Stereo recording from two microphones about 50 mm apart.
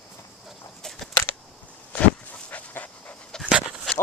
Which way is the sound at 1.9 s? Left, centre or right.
Left.